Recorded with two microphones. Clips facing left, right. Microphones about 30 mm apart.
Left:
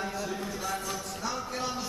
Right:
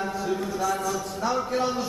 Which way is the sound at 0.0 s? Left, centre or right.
Centre.